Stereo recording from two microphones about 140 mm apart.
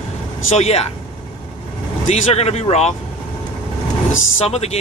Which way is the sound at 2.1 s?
50° left (ahead or behind).